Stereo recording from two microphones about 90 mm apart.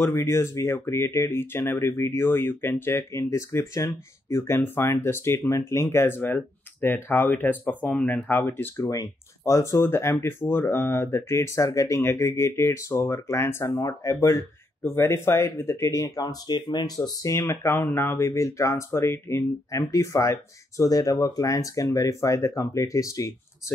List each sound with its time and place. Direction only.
0.0 s speech: 30° left (ahead or behind)
8.8 s speech: 35° left (ahead or behind)
13.7 s speech: 40° left (ahead or behind)
14.8 s speech: 25° left (ahead or behind)